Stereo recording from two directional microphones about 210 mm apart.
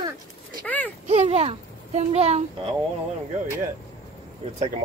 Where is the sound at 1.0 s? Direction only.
30° right (ahead or behind).